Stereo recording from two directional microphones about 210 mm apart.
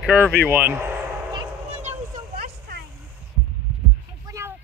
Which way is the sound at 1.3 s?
30° right (ahead or behind).